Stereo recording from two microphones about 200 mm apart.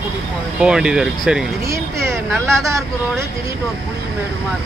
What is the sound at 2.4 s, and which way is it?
Speech, centre (ahead or behind).